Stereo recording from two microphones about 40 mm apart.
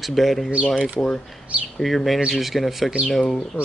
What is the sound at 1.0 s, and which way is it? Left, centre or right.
Speech, left.